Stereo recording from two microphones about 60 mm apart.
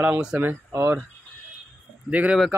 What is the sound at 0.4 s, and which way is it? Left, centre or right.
Speech, right.